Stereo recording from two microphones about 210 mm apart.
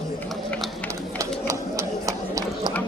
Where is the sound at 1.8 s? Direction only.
15° right (ahead or behind).